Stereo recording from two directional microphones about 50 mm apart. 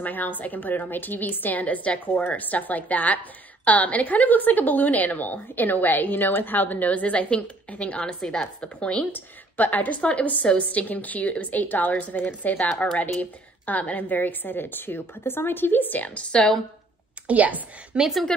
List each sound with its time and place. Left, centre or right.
0.0 s a woman's voice: left
8.0 s a woman's voice: centre
8.7 s a woman's voice: left
16.3 s speech: left
17.3 s speech: right